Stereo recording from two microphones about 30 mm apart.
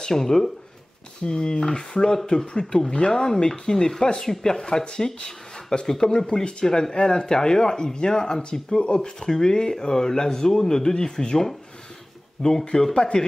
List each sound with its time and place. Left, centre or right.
0.0 s speech: centre
1.2 s speech: left